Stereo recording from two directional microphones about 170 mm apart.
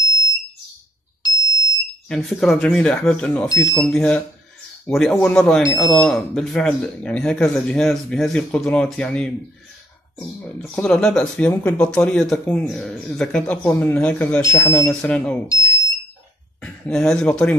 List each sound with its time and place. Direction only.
2.0 s speech: centre (ahead or behind)
3.4 s speech: 20° left (ahead or behind)
3.8 s speech: 5° left (ahead or behind)
10.6 s speech: 5° left (ahead or behind)
14.9 s speech: 5° left (ahead or behind)
15.4 s smoke detector: 20° left (ahead or behind)
16.6 s speech: 5° left (ahead or behind)